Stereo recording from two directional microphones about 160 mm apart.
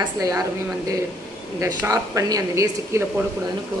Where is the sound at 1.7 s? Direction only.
20° right (ahead or behind).